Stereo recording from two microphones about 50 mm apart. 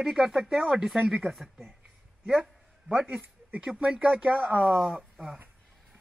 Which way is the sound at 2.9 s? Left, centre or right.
Right.